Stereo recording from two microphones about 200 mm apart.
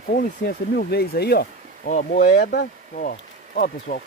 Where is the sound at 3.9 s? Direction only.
55° left (ahead or behind).